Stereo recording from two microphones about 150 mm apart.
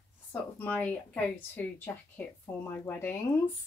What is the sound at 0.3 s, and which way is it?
Speech, 10° left (ahead or behind).